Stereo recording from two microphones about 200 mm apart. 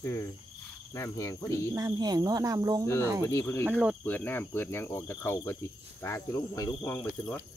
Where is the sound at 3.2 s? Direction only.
15° left (ahead or behind).